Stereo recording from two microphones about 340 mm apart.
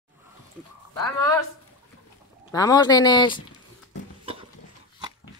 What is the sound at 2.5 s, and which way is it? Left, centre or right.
Speech, centre.